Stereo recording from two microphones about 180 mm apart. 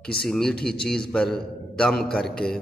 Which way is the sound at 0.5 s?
60° left (ahead or behind).